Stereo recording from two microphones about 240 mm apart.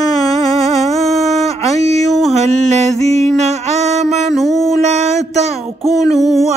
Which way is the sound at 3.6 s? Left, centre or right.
Right.